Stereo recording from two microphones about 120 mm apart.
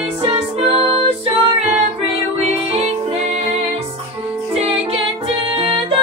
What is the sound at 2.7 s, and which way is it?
Music, 60° right (ahead or behind).